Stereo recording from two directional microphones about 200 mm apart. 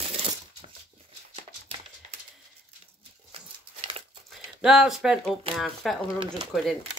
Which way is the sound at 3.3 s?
30° right (ahead or behind).